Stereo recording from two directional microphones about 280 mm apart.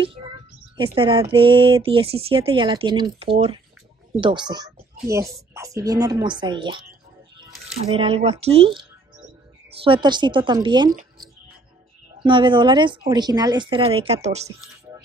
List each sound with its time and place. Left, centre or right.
0.0 s a woman's voice: centre
7.9 s speech: right
12.2 s speech: centre